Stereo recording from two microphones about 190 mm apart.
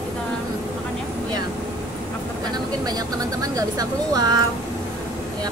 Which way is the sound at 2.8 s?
20° right (ahead or behind).